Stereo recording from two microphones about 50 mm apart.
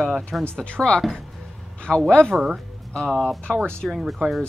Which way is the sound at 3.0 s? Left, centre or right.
Centre.